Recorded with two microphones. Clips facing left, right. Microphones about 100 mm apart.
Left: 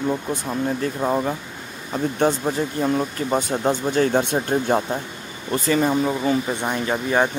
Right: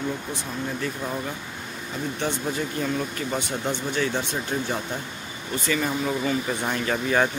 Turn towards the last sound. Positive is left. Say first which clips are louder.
# left 2 dB
turn(degrees=20)  # may be behind; listen again after turning